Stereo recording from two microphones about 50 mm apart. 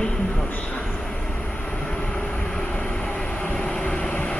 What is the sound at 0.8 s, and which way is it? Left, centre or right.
Vehicle, centre.